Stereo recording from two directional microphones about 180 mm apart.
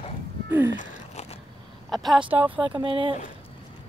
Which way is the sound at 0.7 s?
40° left (ahead or behind).